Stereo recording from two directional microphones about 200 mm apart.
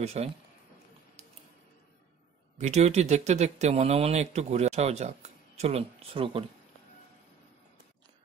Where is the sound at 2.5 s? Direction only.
35° right (ahead or behind).